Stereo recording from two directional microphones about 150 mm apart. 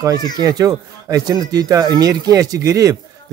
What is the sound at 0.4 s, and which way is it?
Speech, 25° right (ahead or behind).